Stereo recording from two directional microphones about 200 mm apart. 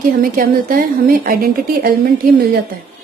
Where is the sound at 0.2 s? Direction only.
45° right (ahead or behind).